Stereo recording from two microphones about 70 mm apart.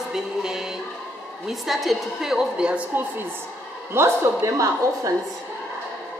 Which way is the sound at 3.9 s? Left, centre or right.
Right.